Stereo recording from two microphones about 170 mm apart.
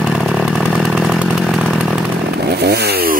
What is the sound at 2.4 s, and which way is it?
Chainsaw, 70° right (ahead or behind).